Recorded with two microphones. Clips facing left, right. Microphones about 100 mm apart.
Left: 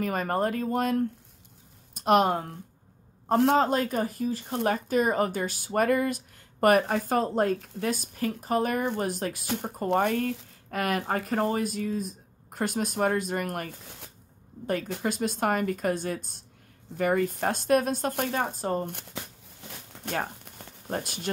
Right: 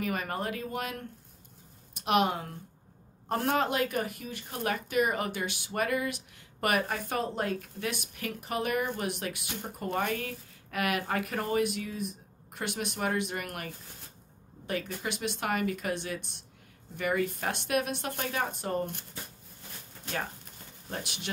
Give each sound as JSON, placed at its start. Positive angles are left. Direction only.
{"t": 0.0, "sound": "speech", "side_deg": 40}
{"t": 3.5, "sound": "speech", "side_deg": 35}
{"t": 9.8, "sound": "speech", "side_deg": 50}
{"t": 10.7, "sound": "speech", "side_deg": 35}
{"t": 15.0, "sound": "speech", "side_deg": 40}
{"t": 18.1, "sound": "speech", "side_deg": 55}
{"t": 18.6, "sound": "speech", "side_deg": 30}
{"t": 18.9, "sound": "speech", "side_deg": 60}
{"t": 20.1, "sound": "a sound", "side_deg": 55}